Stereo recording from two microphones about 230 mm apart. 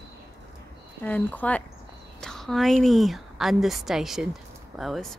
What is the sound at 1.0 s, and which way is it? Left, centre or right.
A woman's voice, centre.